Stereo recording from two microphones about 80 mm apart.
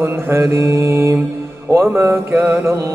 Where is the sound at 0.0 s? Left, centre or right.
Right.